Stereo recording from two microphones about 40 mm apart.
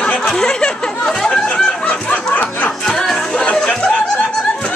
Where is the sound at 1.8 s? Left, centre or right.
Left.